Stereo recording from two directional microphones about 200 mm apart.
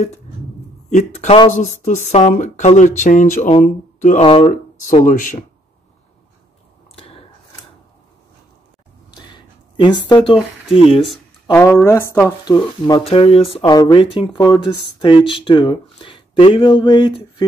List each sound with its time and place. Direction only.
0.8 s speech: 35° left (ahead or behind)
4.2 s speech: 30° left (ahead or behind)
4.5 s speech: 40° left (ahead or behind)
7.0 s a sound: 30° left (ahead or behind)
9.1 s a sound: 20° left (ahead or behind)
10.7 s speech: 30° left (ahead or behind)
11.5 s speech: 10° left (ahead or behind)